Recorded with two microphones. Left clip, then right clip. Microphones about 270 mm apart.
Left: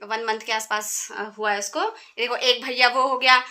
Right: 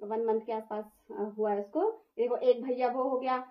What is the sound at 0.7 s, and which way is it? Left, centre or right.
Speech, left.